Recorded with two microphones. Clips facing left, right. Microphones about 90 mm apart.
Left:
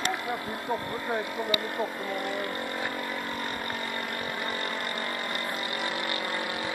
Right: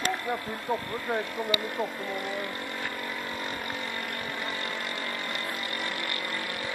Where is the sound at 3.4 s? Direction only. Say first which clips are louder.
Left 1 dB; centre (ahead or behind); by 6.7 s 20° left (ahead or behind).